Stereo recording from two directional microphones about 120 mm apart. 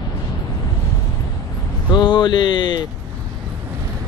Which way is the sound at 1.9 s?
40° left (ahead or behind).